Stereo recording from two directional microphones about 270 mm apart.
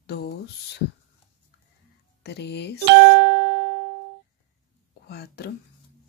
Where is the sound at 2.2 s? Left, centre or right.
Left.